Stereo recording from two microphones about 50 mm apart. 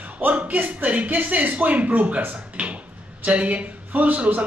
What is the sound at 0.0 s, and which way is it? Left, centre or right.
A man's voice, right.